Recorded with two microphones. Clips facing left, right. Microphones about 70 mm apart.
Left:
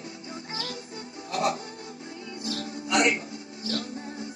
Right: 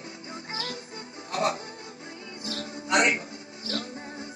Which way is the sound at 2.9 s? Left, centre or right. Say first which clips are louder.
Even; right.